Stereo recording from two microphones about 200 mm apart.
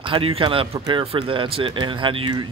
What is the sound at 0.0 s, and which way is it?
Speech, 25° right (ahead or behind).